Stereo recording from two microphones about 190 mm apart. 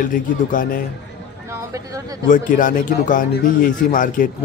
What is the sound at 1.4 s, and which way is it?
Speech, 15° right (ahead or behind).